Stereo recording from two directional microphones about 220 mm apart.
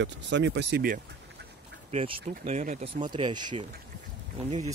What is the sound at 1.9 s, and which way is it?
Speech, 25° right (ahead or behind).